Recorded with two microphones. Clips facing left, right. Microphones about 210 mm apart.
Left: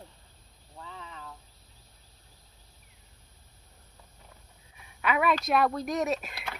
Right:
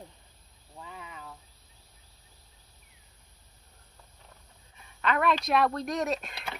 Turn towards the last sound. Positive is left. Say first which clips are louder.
# left 1 dB
turn(degrees=5)  # may be behind; listen again after turning